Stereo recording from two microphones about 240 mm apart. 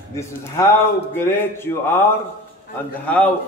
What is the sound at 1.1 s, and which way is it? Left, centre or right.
Speech, centre.